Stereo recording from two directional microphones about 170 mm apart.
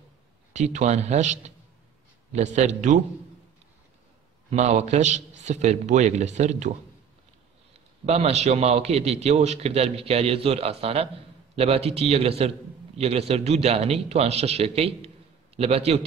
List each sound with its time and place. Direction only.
0.5 s a man's voice: 45° right (ahead or behind)
4.5 s a man's voice: 45° right (ahead or behind)
8.0 s a man's voice: 40° right (ahead or behind)